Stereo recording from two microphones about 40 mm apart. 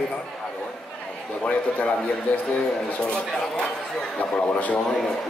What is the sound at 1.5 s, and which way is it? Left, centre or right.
Speech, left.